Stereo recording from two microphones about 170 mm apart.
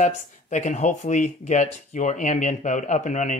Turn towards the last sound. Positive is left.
turn(degrees=45)  # may be behind; listen again after turning